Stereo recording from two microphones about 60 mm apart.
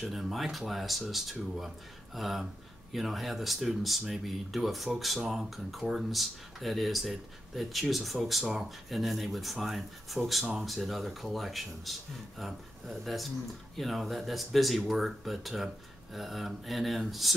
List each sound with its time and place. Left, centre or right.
0.0 s speech: centre